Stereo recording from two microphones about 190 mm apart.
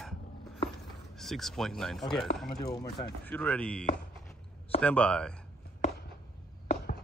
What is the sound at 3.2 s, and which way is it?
Speech, 5° left (ahead or behind).